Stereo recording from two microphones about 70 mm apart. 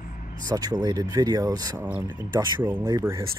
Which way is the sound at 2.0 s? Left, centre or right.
Right.